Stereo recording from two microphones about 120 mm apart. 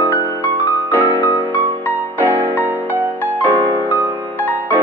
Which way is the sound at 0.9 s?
15° right (ahead or behind).